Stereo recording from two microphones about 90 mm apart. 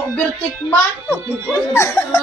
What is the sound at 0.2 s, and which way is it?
A child's voice, 20° left (ahead or behind).